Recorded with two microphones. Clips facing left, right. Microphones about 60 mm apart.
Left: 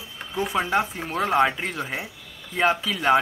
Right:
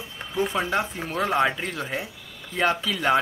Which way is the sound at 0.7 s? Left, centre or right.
Left.